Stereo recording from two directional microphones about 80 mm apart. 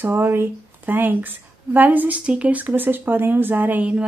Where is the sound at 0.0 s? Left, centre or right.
Right.